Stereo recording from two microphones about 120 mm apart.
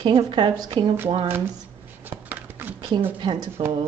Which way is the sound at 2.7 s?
40° right (ahead or behind).